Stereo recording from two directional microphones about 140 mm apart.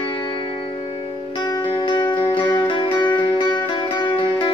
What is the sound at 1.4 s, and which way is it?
Music, 30° left (ahead or behind).